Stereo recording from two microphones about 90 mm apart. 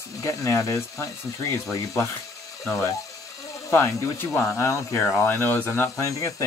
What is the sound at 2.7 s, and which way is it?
Speech, 30° left (ahead or behind).